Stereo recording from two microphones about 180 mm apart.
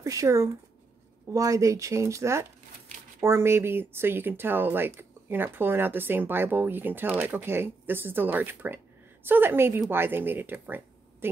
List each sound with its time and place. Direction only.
0.0 s speech: 15° right (ahead or behind)